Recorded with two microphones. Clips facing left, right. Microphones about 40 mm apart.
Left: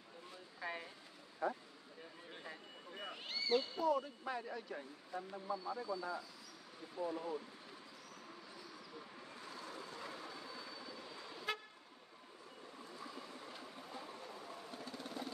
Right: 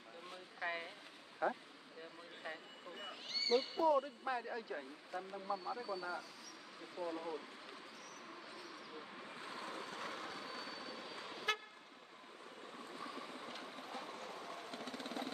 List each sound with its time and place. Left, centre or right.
0.6 s a sound: right
1.4 s speech: right
3.1 s a sound: centre
3.8 s speech: centre
5.1 s speech: centre
7.1 s speech: centre
9.3 s vehicle: right
12.9 s train: right